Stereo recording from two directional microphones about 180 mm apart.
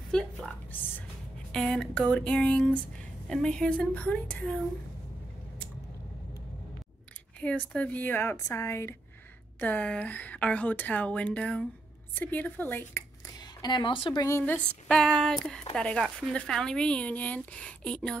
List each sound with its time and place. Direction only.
0.1 s a woman's voice: 5° left (ahead or behind)
7.3 s a woman's voice: 5° left (ahead or behind)
13.4 s speech: 25° left (ahead or behind)
14.2 s a woman's voice: 10° left (ahead or behind)